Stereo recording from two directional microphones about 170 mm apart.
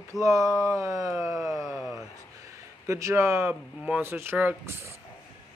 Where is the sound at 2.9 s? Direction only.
15° right (ahead or behind).